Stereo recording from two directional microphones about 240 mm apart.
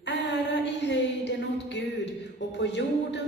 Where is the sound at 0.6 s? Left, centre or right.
Left.